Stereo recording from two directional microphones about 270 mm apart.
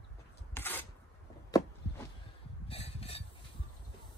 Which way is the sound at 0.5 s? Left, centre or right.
Centre.